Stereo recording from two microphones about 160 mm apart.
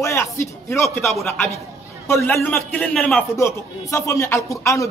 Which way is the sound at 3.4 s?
15° left (ahead or behind).